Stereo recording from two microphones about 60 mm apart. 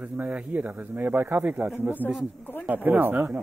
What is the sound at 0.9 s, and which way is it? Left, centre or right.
Speech, right.